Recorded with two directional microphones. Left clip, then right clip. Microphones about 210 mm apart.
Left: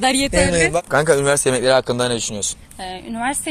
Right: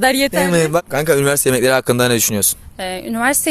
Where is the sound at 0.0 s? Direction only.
55° right (ahead or behind).